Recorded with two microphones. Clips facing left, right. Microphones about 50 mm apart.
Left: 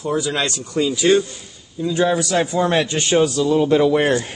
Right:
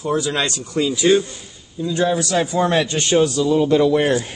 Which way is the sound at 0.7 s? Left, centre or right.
Centre.